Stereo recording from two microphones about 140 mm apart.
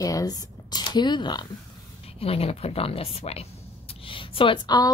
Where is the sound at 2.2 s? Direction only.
45° left (ahead or behind).